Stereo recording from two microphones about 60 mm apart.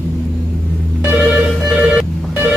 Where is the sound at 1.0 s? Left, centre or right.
Right.